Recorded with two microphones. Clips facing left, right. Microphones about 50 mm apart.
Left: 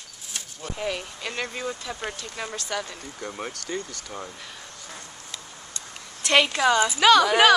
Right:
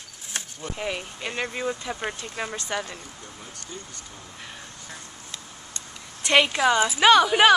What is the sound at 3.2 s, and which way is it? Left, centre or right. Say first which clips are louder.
Speech: left 8 dB; left.